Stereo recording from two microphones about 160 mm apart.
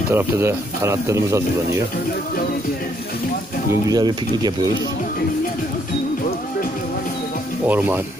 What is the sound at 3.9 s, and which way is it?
Speech, 25° right (ahead or behind).